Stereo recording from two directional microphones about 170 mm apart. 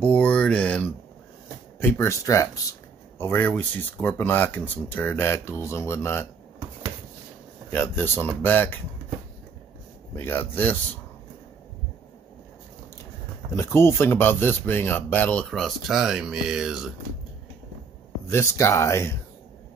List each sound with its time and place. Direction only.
0.0 s speech: 10° left (ahead or behind)
7.7 s speech: 10° left (ahead or behind)
10.1 s speech: 10° left (ahead or behind)
13.6 s speech: 15° left (ahead or behind); by 16.8 s 5° right (ahead or behind)
18.2 s speech: 15° left (ahead or behind)